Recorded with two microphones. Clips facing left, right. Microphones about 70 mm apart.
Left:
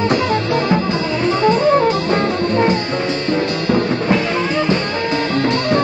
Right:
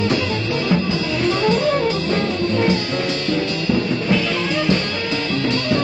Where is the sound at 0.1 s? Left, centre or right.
Left.